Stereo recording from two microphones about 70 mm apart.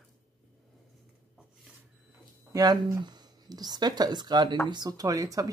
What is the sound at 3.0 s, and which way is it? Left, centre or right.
Speech, right.